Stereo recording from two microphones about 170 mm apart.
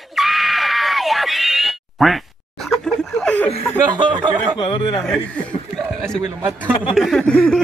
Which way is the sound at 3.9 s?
25° right (ahead or behind).